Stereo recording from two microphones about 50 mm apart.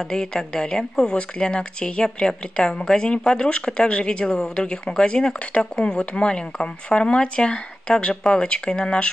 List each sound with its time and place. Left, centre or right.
0.1 s speech: centre